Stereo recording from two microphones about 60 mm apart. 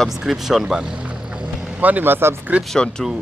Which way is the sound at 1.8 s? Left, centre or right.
Right.